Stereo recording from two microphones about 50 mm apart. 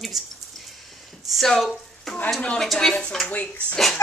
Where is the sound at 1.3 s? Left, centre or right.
Centre.